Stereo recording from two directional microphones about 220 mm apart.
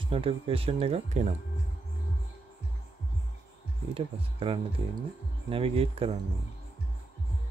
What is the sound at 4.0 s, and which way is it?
Speech, 25° right (ahead or behind).